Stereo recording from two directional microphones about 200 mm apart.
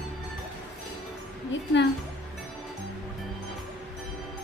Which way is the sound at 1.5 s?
65° left (ahead or behind).